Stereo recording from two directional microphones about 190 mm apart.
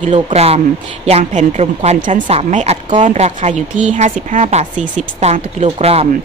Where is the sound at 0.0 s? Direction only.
35° right (ahead or behind).